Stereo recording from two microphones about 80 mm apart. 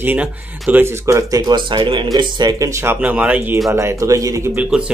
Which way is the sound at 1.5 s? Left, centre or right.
Right.